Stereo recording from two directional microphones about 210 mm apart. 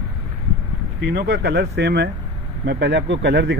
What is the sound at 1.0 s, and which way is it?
Speech, 50° right (ahead or behind).